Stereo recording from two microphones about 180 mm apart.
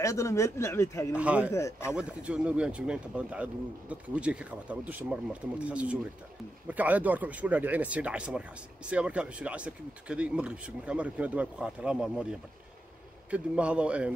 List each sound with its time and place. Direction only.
0.0 s speech: 15° left (ahead or behind)
1.1 s speech: 5° right (ahead or behind)
1.5 s speech: 15° left (ahead or behind)
1.9 s speech: 5° right (ahead or behind)